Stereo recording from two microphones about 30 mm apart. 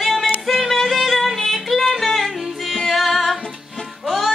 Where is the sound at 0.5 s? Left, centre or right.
Centre.